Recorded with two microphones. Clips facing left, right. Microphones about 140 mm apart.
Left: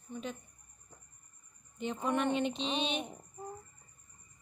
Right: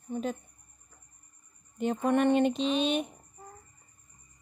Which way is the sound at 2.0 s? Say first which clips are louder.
Right 7 dB; 60° right (ahead or behind).